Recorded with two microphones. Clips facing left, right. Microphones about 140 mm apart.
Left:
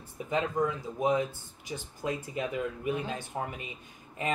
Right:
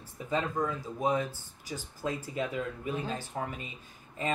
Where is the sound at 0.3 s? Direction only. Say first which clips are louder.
Left 2 dB; 20° left (ahead or behind).